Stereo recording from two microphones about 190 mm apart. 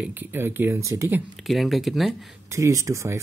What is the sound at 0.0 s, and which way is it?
Speech, 10° right (ahead or behind).